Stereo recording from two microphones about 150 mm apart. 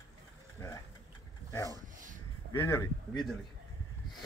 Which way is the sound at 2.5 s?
15° left (ahead or behind).